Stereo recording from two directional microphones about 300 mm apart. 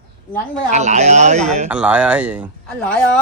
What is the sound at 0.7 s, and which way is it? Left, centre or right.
Speech, right.